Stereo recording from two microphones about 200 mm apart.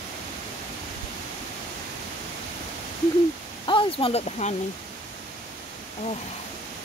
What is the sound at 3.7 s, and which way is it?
Speech, 25° left (ahead or behind).